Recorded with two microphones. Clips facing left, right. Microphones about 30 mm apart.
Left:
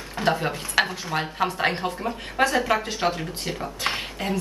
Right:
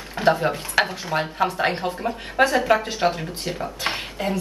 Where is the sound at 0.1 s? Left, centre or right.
Centre.